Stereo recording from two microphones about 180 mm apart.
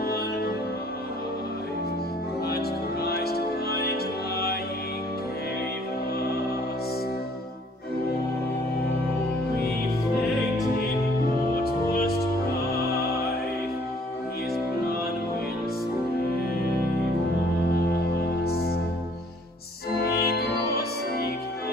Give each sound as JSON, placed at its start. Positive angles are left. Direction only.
{"t": 0.0, "sound": "music", "side_deg": 60}
{"t": 2.4, "sound": "music", "side_deg": 60}
{"t": 11.6, "sound": "music", "side_deg": 60}
{"t": 18.4, "sound": "music", "side_deg": 60}
{"t": 20.0, "sound": "music", "side_deg": 60}